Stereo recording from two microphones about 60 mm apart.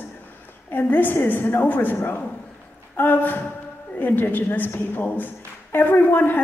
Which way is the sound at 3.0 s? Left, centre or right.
Left.